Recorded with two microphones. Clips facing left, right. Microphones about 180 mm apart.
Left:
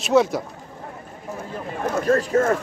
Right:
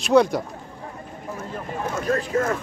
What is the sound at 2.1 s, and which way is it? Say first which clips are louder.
Speech: left 4 dB; 45° left (ahead or behind).